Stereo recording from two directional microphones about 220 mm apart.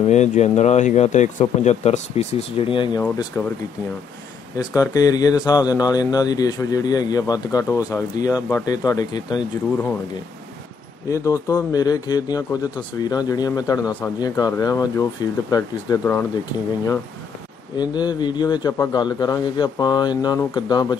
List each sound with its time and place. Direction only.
0.1 s speech: 30° left (ahead or behind)
3.0 s speech: 10° left (ahead or behind)
4.6 s speech: 15° left (ahead or behind)
11.1 s speech: 15° left (ahead or behind)
17.7 s a man's voice: 20° left (ahead or behind)